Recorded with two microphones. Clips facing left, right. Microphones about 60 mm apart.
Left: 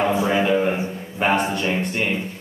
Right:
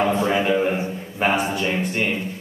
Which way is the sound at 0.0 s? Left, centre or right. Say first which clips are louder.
Even; centre.